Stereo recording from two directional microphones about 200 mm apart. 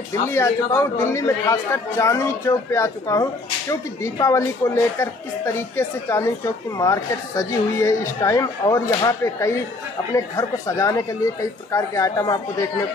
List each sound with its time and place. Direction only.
0.2 s a woman's voice: 15° left (ahead or behind)